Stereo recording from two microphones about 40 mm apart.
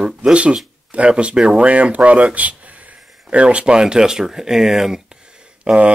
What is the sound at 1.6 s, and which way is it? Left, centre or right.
Speech, right.